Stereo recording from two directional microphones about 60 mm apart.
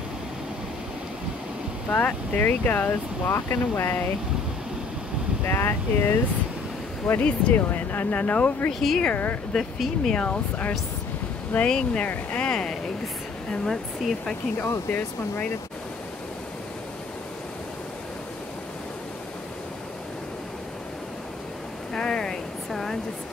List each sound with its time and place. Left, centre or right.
1.9 s speech: left
2.9 s speech: left
5.5 s speech: left
7.2 s speech: left
7.5 s speech: left
8.8 s speech: centre
9.1 s speech: left
9.5 s speech: centre
10.1 s speech: left
14.6 s speech: left
21.9 s a sound: centre